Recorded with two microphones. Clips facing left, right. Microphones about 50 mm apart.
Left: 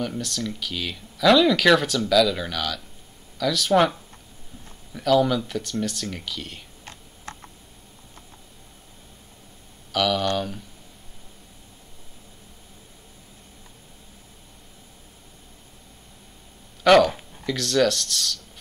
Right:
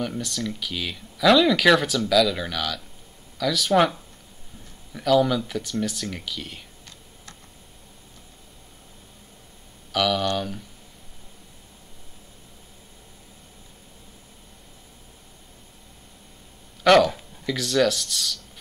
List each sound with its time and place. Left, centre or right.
0.0 s speech: centre
9.9 s speech: centre
16.8 s speech: centre